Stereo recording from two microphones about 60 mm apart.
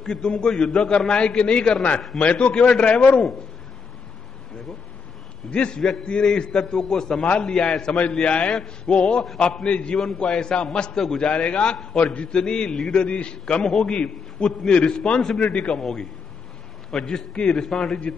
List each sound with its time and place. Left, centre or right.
0.0 s a man's voice: centre
5.5 s a man's voice: centre
15.8 s a man's voice: centre